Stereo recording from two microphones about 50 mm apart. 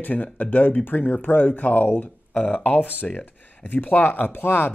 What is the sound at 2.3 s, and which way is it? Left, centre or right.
Speech, left.